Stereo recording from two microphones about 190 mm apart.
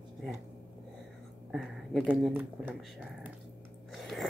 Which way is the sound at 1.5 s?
Centre (ahead or behind).